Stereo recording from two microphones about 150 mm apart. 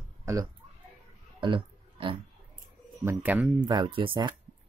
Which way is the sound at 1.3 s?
35° right (ahead or behind).